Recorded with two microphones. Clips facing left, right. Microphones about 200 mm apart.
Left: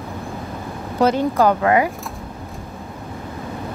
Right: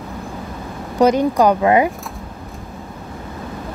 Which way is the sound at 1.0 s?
15° right (ahead or behind).